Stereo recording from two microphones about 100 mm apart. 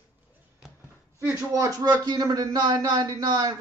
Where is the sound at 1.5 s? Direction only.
35° right (ahead or behind).